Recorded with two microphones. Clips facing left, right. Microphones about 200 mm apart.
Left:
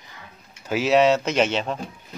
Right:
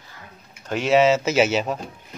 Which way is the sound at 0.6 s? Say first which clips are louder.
Even; 5° left (ahead or behind).